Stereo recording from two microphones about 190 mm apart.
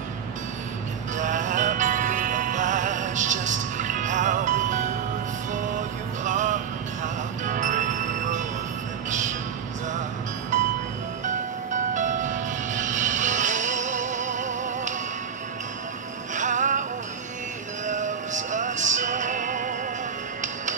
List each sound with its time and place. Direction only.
1.1 s music: 40° right (ahead or behind)
6.2 s music: 40° right (ahead or behind)
10.5 s music: 40° right (ahead or behind)
16.3 s music: 40° right (ahead or behind)
17.8 s music: 40° right (ahead or behind)